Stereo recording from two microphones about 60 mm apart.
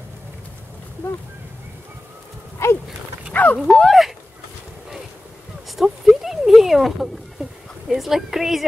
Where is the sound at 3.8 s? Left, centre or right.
Centre.